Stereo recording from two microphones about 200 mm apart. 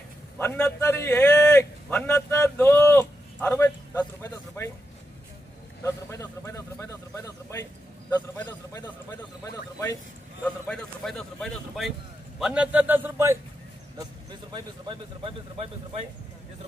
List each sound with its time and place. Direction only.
0.4 s a man's voice: 10° left (ahead or behind)
6.0 s a sound: 15° left (ahead or behind)
8.1 s a man's voice: 20° left (ahead or behind); by 13.4 s 10° right (ahead or behind)
14.5 s speech: 25° right (ahead or behind)